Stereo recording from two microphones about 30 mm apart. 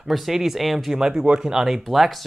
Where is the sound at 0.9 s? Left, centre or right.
Right.